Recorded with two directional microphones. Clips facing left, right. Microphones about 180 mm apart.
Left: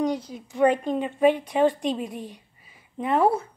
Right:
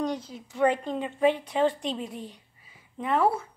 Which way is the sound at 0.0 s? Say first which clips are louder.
Left 4 dB; 15° left (ahead or behind).